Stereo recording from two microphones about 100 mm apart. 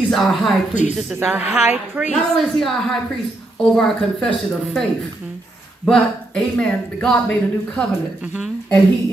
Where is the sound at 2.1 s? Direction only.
5° left (ahead or behind).